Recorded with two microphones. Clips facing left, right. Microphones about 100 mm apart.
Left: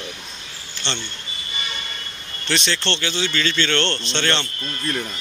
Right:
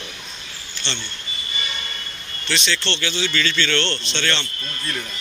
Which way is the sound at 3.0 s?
30° left (ahead or behind).